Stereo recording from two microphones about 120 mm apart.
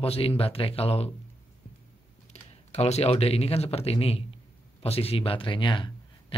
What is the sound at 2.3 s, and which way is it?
Speech, 65° left (ahead or behind).